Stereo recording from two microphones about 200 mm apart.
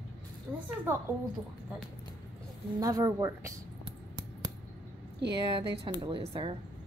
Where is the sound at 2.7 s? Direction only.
20° right (ahead or behind).